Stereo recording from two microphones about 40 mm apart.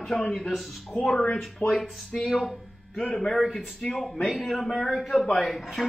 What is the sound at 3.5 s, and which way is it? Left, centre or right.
Speech, centre.